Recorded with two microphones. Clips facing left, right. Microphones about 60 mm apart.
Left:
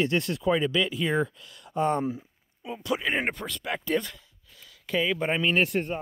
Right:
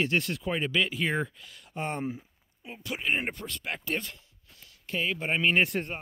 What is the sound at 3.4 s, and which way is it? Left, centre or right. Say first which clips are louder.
Speech: left 4 dB; left.